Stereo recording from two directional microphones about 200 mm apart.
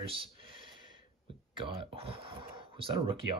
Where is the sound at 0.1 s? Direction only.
25° right (ahead or behind).